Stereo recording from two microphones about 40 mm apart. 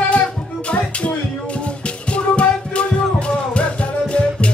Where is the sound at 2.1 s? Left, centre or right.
Left.